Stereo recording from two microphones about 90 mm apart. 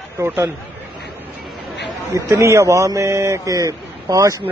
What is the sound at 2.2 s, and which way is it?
A man's voice, 25° right (ahead or behind).